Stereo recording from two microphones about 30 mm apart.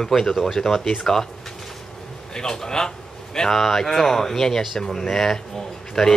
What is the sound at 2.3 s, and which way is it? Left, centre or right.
Speech, centre.